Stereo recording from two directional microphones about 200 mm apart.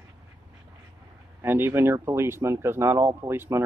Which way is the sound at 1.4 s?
10° right (ahead or behind).